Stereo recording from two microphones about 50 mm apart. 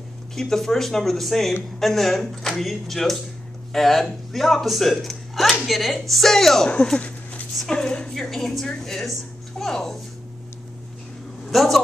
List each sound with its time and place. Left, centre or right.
0.4 s speech: centre
6.7 s speech: left; by 9.9 s centre
11.5 s speech: centre